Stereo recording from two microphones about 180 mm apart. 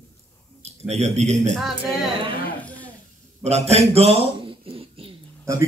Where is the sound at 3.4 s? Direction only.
35° right (ahead or behind).